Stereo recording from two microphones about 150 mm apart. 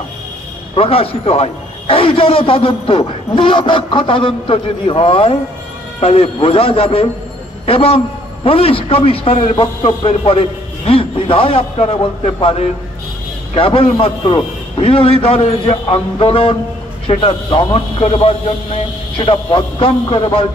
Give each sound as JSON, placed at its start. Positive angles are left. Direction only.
{"t": 0.7, "sound": "a man's voice", "side_deg": 40}